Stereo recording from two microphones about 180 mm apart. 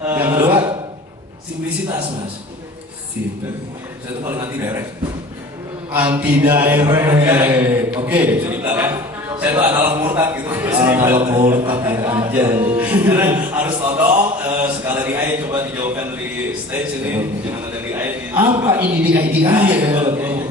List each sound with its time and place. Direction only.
0.0 s a man's voice: 15° right (ahead or behind)
4.2 s a man's voice: 15° right (ahead or behind)
5.9 s a man's voice: 10° right (ahead or behind)
8.0 s a sound: 10° right (ahead or behind)
9.4 s a man's voice: 10° right (ahead or behind)
11.1 s speech: 30° right (ahead or behind)
11.5 s a man's voice: 10° right (ahead or behind)
12.7 s music: 10° right (ahead or behind)
16.7 s a man's voice: 10° right (ahead or behind)